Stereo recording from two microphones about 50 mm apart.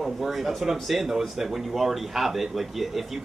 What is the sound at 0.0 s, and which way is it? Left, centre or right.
Speech, centre.